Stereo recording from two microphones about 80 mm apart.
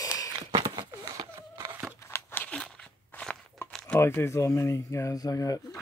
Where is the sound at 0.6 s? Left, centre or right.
Right.